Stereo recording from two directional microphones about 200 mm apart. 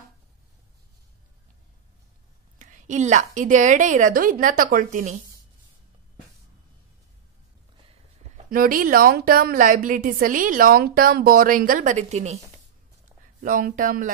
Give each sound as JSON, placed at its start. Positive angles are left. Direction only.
{"t": 2.6, "sound": "a woman's voice", "side_deg": -40}
{"t": 8.5, "sound": "a woman's voice", "side_deg": -45}
{"t": 13.4, "sound": "a woman's voice", "side_deg": -45}